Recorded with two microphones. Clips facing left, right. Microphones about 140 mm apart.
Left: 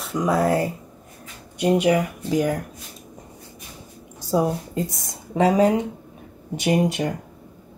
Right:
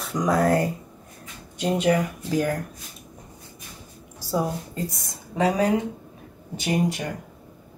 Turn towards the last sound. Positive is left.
turn(degrees=20)  # may be behind; listen again after turning